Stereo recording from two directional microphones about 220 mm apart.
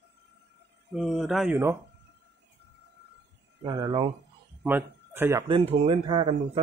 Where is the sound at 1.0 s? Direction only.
Centre (ahead or behind).